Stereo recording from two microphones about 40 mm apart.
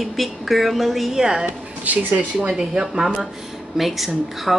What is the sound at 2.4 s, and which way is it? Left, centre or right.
Speech, centre.